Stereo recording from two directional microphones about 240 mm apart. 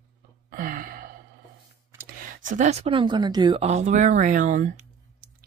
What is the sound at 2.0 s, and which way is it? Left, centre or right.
Speech, right.